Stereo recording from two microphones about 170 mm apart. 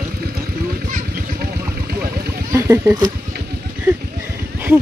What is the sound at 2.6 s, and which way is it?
Speech, 15° right (ahead or behind).